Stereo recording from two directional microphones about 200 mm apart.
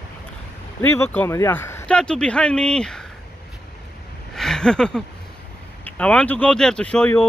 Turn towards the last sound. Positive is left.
turn(degrees=5)  # may be behind; listen again after turning